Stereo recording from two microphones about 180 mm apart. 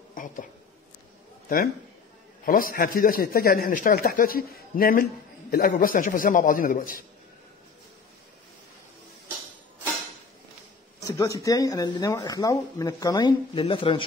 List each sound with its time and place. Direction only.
0.1 s a sound: 50° left (ahead or behind)
2.4 s speech: 50° left (ahead or behind)
11.1 s speech: 20° left (ahead or behind)